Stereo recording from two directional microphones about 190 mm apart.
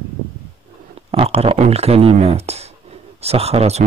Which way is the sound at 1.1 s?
30° right (ahead or behind).